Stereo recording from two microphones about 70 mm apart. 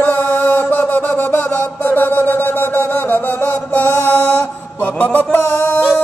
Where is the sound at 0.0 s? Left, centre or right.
Left.